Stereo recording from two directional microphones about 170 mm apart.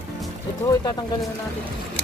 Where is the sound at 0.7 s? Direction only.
25° left (ahead or behind).